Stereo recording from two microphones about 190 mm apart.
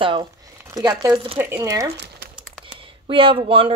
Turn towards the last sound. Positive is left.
turn(degrees=-30)  # may be behind; listen again after turning